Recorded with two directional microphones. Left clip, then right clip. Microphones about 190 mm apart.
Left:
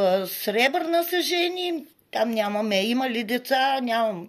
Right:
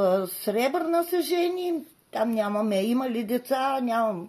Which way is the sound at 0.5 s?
20° right (ahead or behind).